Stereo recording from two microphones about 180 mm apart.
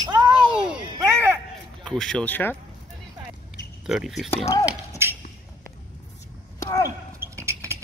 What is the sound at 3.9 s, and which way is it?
Speech, centre (ahead or behind).